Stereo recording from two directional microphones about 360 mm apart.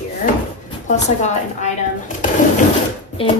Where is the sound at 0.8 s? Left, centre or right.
Centre.